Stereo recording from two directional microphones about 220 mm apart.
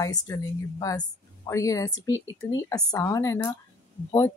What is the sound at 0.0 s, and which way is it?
A woman's voice, 15° left (ahead or behind).